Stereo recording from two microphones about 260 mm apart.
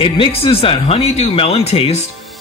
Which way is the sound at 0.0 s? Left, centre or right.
Left.